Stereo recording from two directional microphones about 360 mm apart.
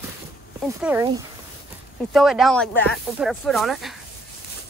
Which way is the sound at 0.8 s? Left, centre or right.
Centre.